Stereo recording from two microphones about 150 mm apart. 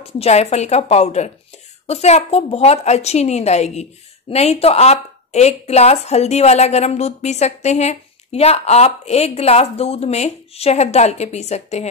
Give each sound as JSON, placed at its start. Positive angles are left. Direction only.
{"t": 0.0, "sound": "a woman's voice", "side_deg": 45}